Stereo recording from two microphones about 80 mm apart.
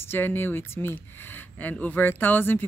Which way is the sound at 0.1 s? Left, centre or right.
Left.